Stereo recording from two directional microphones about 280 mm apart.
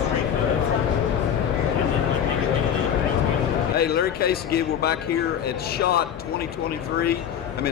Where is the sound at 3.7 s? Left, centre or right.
Left.